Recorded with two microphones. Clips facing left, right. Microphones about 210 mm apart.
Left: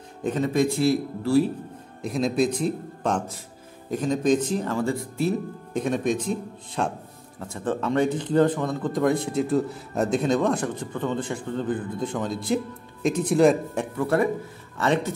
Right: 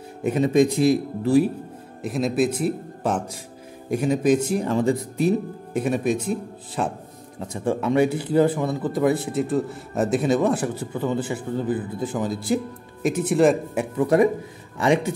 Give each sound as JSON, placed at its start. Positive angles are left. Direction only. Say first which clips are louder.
{"t": 0.2, "sound": "speech", "louder": "right 4 dB", "side_deg": -10}
{"t": 2.0, "sound": "speech", "louder": "right 1 dB", "side_deg": 0}
{"t": 5.7, "sound": "speech", "louder": "right 2 dB", "side_deg": -5}
{"t": 7.3, "sound": "speech", "louder": "right 3 dB", "side_deg": -15}
{"t": 13.9, "sound": "speech", "louder": "right 5 dB", "side_deg": -15}